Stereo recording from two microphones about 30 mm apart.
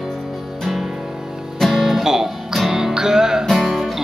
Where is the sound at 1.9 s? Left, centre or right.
Centre.